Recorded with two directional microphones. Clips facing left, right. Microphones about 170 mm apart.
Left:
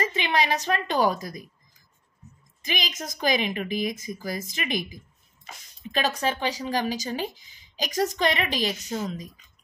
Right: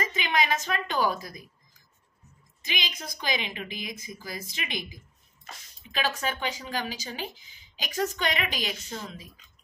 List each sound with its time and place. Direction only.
0.0 s speech: 35° left (ahead or behind)
2.6 s a woman's voice: 45° left (ahead or behind)
5.9 s speech: 40° left (ahead or behind)